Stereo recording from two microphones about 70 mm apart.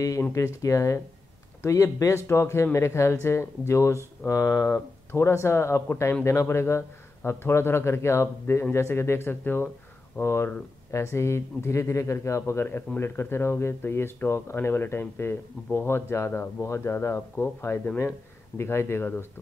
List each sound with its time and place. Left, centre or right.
0.3 s speech: left
4.3 s speech: left